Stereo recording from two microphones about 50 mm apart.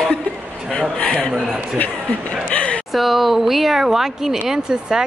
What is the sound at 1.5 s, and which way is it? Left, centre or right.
Speech, left.